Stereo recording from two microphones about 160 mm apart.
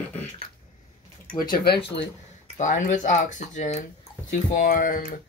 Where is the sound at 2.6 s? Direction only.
50° left (ahead or behind).